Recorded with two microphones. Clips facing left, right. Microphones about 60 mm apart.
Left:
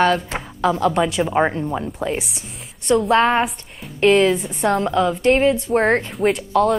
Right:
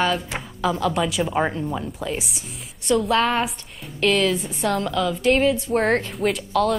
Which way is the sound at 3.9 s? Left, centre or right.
Left.